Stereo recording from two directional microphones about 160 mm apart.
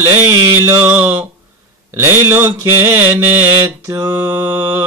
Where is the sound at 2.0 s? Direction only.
15° right (ahead or behind).